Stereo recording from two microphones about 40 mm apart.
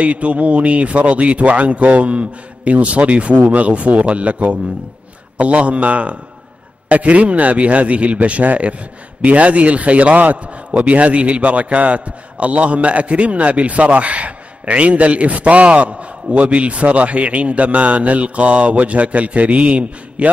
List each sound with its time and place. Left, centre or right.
0.0 s a man's voice: right